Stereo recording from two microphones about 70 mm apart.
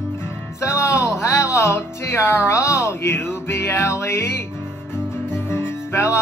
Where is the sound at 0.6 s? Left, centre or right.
Left.